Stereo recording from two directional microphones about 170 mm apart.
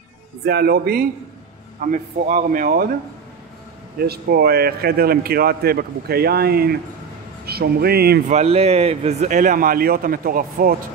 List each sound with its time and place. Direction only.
0.5 s a man's voice: 65° right (ahead or behind)
1.9 s a man's voice: 50° right (ahead or behind)
4.0 s a man's voice: 65° right (ahead or behind)
8.3 s a man's voice: 40° right (ahead or behind); by 10.8 s 55° right (ahead or behind)